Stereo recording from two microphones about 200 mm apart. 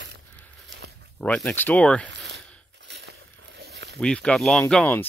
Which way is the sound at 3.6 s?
55° right (ahead or behind).